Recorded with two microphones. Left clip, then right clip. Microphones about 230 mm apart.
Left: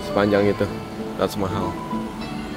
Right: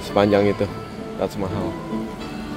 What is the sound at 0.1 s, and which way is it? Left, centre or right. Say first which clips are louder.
Speech: right 2 dB; centre.